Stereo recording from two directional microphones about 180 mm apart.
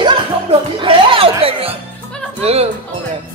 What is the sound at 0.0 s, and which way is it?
Music, 30° right (ahead or behind).